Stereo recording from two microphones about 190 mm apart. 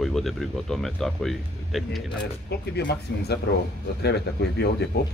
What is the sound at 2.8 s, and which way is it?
Speech, 60° left (ahead or behind).